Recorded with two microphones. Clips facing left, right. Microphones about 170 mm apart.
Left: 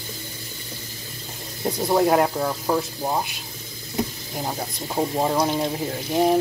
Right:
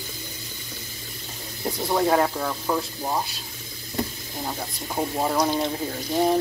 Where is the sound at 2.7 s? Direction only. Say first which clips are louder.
Left 2 dB; 15° left (ahead or behind).